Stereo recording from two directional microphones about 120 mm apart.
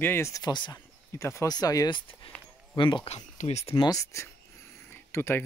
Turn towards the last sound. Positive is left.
turn(degrees=20)  # may be behind; listen again after turning